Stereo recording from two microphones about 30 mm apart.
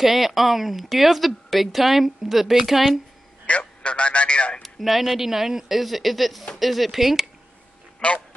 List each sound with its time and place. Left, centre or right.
0.0 s speech: centre
3.4 s a man's voice: left
4.6 s speech: centre
8.0 s speech: left